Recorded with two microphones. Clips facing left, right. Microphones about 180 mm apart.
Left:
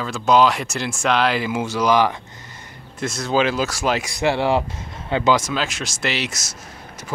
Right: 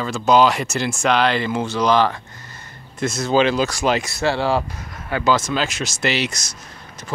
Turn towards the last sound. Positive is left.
turn(degrees=5)  # may be behind; listen again after turning